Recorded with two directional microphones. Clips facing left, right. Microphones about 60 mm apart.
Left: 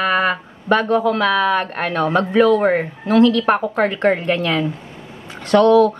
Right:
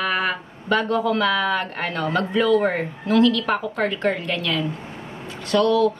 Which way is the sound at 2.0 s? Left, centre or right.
Left.